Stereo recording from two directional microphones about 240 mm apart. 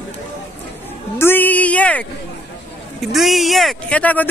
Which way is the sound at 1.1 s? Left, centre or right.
Centre.